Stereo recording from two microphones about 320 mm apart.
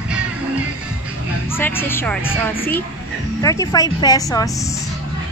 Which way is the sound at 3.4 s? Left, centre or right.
Centre.